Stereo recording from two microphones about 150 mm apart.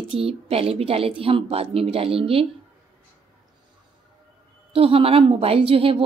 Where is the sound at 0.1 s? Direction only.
40° right (ahead or behind).